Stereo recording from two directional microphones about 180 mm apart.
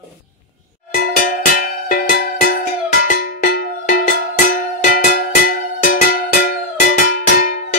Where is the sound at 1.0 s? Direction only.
50° left (ahead or behind).